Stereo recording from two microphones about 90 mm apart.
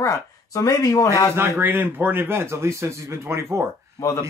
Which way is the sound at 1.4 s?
20° right (ahead or behind).